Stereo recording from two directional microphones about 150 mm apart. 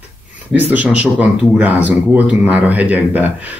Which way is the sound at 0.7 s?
10° right (ahead or behind).